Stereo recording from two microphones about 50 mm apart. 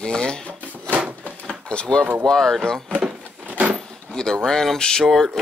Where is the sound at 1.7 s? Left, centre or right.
Centre.